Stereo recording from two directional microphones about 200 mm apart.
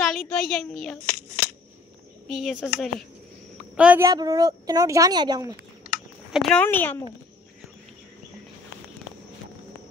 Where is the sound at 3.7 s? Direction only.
5° right (ahead or behind).